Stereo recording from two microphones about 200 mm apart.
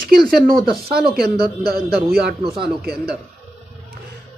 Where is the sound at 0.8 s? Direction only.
50° right (ahead or behind).